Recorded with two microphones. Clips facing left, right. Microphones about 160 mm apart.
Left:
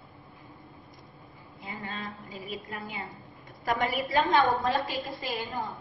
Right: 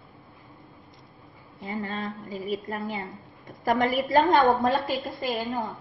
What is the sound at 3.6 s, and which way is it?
A woman's voice, 45° right (ahead or behind).